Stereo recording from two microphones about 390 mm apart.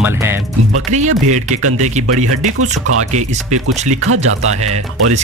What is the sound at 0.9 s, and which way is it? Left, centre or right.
Speech, centre.